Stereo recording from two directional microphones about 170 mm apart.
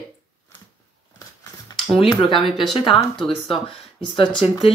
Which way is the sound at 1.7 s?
30° left (ahead or behind).